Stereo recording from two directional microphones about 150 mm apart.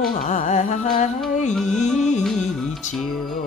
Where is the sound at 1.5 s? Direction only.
5° left (ahead or behind).